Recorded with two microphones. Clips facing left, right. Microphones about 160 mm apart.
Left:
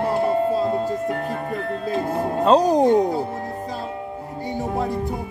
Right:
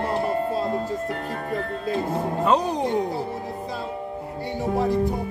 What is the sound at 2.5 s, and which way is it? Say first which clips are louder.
Speech: left 8 dB; 40° left (ahead or behind).